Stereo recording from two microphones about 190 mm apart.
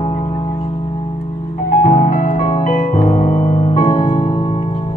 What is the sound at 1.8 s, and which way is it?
Music, 45° left (ahead or behind).